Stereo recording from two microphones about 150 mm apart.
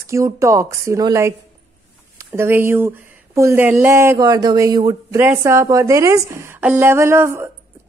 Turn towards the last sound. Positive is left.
turn(degrees=-15)  # may be behind; listen again after turning